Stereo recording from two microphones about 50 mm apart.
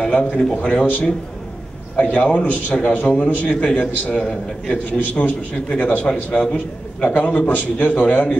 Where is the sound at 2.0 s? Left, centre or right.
Left.